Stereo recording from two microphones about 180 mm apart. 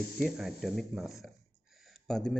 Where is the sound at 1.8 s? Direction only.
Centre (ahead or behind).